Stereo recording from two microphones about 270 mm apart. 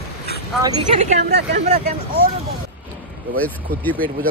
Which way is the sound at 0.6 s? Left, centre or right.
Right.